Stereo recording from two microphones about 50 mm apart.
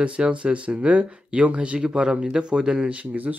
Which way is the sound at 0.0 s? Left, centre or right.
Right.